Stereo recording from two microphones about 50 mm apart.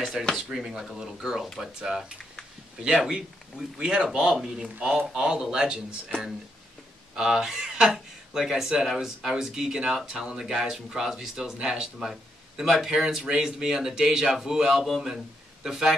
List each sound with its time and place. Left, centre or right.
0.2 s speech: centre
7.2 s a man's voice: centre